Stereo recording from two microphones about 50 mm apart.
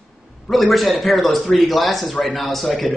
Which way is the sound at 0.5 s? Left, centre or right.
Centre.